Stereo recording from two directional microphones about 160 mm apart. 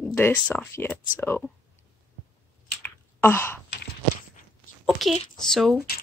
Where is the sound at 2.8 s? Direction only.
15° left (ahead or behind).